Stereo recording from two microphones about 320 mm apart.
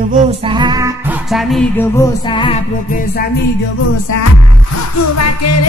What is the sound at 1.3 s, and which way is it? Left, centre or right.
Music, centre.